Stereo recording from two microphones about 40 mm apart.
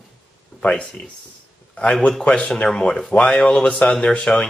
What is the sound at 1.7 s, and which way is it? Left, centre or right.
A man's voice, left.